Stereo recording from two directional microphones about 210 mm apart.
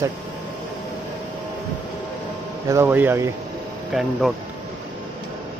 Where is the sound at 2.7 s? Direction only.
10° right (ahead or behind).